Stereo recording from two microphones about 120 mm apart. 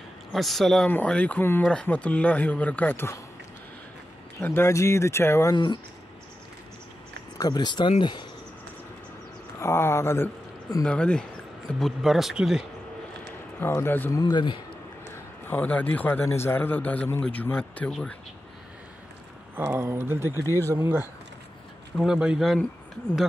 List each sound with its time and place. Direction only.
0.3 s speech: centre (ahead or behind); by 3.2 s 20° left (ahead or behind)
4.4 s speech: 20° left (ahead or behind)
7.3 s speech: 35° left (ahead or behind)
9.6 s speech: 20° left (ahead or behind)
10.8 s speech: 10° left (ahead or behind)
11.8 s speech: centre (ahead or behind)
13.6 s speech: 20° left (ahead or behind)
14.1 s speech: 35° left (ahead or behind)
15.4 s speech: 15° left (ahead or behind)
19.5 s speech: 20° right (ahead or behind)
20.4 s speech: 25° left (ahead or behind)
20.7 s speech: 20° right (ahead or behind)
21.9 s speech: 5° right (ahead or behind)